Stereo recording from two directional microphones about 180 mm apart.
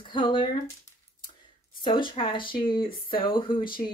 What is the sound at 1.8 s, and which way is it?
Speech, 25° left (ahead or behind).